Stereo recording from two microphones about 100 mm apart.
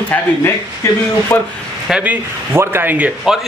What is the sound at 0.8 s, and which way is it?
Speech, 25° left (ahead or behind).